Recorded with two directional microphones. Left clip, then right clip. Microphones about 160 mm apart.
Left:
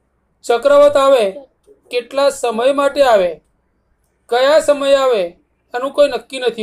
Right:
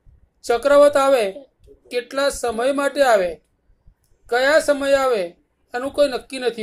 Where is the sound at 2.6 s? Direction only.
40° right (ahead or behind).